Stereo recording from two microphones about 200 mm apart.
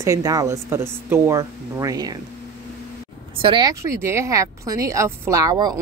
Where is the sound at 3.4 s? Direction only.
25° right (ahead or behind).